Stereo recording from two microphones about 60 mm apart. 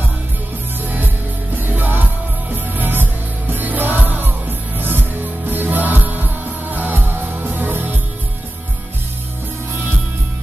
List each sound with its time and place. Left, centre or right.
0.8 s music: right